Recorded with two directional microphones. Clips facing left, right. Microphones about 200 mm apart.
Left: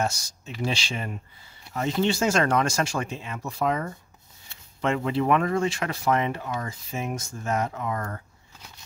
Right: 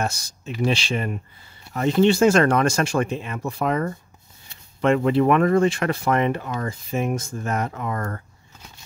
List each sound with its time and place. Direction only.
0.0 s speech: 60° right (ahead or behind)